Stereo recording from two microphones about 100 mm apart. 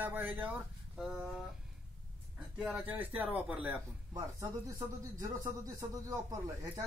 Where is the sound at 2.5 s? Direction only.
10° right (ahead or behind).